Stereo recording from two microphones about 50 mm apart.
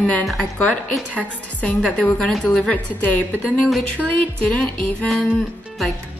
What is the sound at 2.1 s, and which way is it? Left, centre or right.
Speech, centre.